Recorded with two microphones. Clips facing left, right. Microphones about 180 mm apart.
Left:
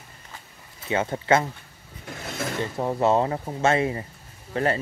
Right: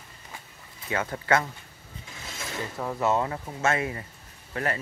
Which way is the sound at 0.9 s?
25° left (ahead or behind).